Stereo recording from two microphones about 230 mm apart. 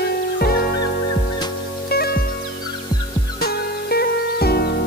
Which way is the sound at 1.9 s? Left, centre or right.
Left.